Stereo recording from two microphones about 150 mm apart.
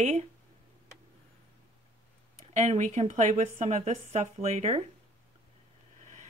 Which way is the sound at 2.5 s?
50° right (ahead or behind).